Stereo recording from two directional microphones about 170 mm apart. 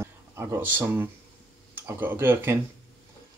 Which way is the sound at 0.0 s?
15° right (ahead or behind).